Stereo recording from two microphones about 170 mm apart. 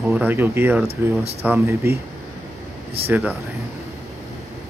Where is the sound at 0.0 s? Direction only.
5° right (ahead or behind).